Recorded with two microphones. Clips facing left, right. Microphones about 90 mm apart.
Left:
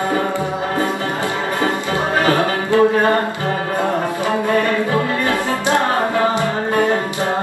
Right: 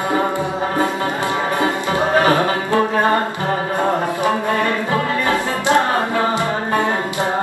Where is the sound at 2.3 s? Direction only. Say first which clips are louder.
Even; 20° right (ahead or behind).